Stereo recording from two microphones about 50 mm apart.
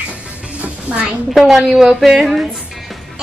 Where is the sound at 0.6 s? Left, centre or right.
Right.